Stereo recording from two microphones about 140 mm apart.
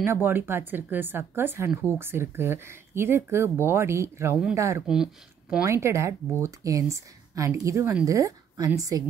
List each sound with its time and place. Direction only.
0.0 s speech: 15° right (ahead or behind)
4.8 s speech: 5° right (ahead or behind)
5.7 s speech: 20° right (ahead or behind)